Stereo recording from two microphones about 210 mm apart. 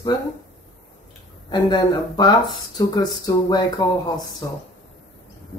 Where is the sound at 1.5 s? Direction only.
20° left (ahead or behind).